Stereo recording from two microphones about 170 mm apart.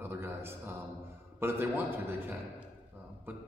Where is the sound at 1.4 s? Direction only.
15° right (ahead or behind).